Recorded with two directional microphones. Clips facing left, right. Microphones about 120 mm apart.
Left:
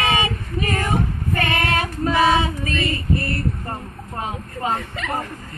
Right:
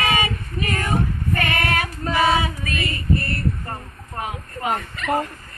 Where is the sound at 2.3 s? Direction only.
25° left (ahead or behind).